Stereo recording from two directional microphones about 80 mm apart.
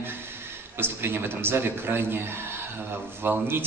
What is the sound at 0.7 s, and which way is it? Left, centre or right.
A man's voice, right.